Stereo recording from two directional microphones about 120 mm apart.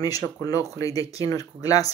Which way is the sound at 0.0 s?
30° left (ahead or behind).